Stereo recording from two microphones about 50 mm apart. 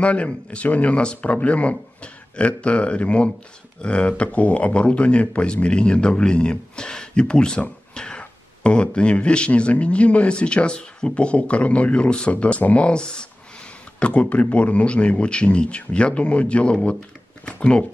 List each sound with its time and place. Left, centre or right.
0.0 s speech: left
7.9 s a sound: centre
9.5 s speech: left